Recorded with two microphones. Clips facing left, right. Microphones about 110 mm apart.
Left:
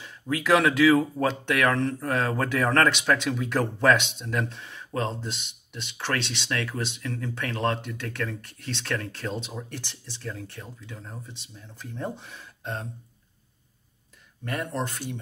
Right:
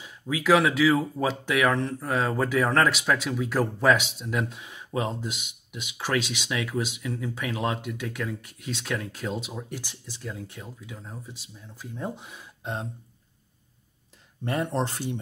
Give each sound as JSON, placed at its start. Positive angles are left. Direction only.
{"t": 0.0, "sound": "speech", "side_deg": -5}
{"t": 14.4, "sound": "speech", "side_deg": -25}